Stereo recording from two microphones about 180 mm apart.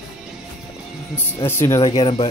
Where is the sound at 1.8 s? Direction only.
30° left (ahead or behind).